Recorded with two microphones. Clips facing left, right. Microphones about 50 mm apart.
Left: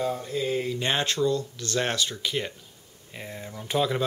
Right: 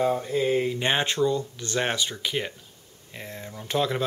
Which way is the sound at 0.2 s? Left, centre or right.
Right.